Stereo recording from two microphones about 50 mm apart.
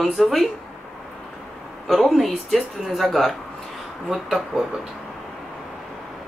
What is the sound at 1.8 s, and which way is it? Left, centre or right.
Speech, centre.